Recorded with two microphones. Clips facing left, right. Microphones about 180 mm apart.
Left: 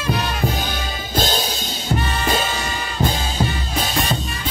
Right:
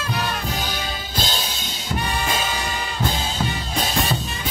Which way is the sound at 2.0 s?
15° right (ahead or behind).